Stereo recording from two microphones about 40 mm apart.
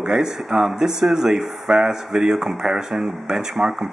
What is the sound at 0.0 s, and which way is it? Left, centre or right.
Speech, centre.